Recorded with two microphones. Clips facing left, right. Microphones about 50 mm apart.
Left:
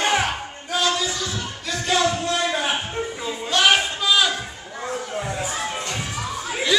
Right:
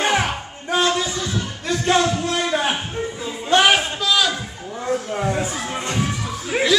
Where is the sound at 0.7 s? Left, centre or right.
Right.